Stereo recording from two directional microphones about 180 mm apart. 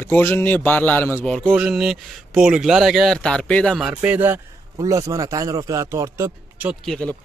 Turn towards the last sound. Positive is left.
turn(degrees=5)  # may be behind; listen again after turning